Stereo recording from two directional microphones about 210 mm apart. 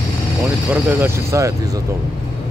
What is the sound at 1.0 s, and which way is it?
Speech, 15° right (ahead or behind).